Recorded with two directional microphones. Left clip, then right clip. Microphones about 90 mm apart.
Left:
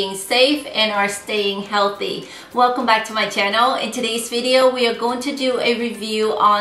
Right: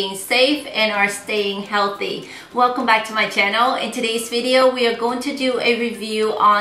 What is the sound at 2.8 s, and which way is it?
A woman's voice, 10° left (ahead or behind).